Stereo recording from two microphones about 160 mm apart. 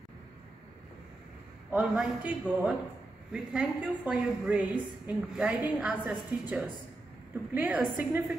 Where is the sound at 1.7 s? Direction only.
10° right (ahead or behind).